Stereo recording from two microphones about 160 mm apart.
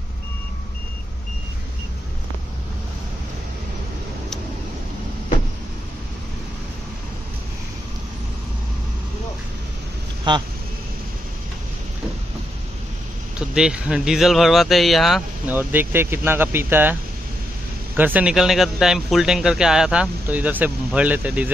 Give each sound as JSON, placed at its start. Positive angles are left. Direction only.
{"t": 10.3, "sound": "speech", "side_deg": -30}
{"t": 13.6, "sound": "speech", "side_deg": -5}
{"t": 15.4, "sound": "speech", "side_deg": -10}
{"t": 17.9, "sound": "speech", "side_deg": -10}